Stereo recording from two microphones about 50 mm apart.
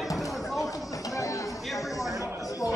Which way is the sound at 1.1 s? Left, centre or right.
Left.